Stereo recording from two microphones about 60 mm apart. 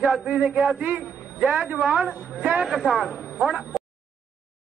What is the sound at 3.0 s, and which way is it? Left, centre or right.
Speech, centre.